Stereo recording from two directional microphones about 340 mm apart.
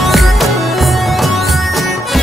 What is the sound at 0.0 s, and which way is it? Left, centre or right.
Music, centre.